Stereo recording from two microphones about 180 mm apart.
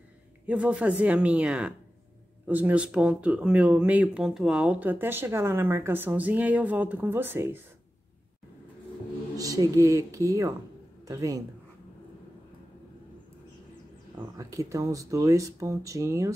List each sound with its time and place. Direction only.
0.5 s speech: 5° right (ahead or behind)
9.4 s speech: 20° right (ahead or behind)
14.1 s speech: 15° right (ahead or behind)